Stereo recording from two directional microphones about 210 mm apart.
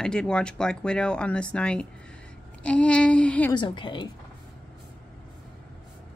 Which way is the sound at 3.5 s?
20° left (ahead or behind).